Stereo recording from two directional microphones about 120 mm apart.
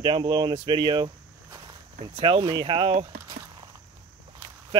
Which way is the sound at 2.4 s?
40° right (ahead or behind).